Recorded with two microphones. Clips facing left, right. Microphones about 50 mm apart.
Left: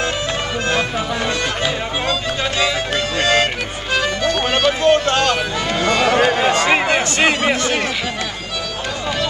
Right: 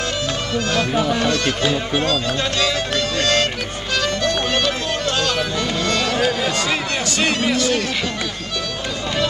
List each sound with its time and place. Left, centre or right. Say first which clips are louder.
0.9 s speech: right 2 dB; centre
3.2 s speech: left 3 dB; centre
3.9 s music: left 2 dB; centre
4.8 s music: left 7 dB; left
5.8 s a sound: left 7 dB; centre
6.1 s a sound: left 5 dB; left